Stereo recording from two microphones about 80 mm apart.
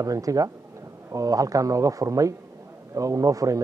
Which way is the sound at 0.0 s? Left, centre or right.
Right.